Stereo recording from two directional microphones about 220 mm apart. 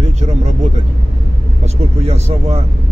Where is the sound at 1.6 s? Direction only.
30° right (ahead or behind).